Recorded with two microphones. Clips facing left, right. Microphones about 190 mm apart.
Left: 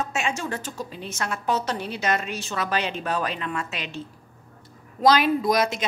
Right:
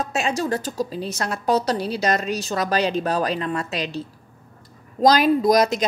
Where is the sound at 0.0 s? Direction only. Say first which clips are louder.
Right 4 dB; 35° right (ahead or behind).